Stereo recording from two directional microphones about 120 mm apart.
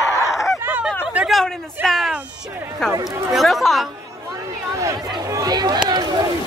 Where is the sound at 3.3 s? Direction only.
Centre (ahead or behind).